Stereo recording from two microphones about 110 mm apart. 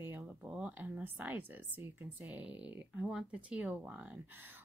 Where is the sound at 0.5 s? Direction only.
10° right (ahead or behind).